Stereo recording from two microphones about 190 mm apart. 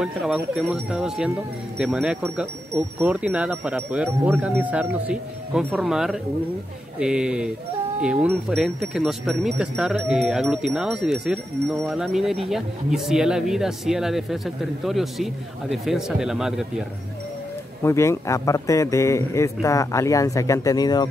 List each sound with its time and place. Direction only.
0.0 s speech: 5° right (ahead or behind)
17.8 s speech: 15° left (ahead or behind)